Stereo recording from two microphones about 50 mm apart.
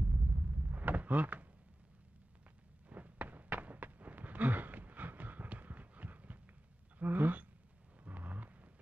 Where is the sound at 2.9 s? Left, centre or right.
Right.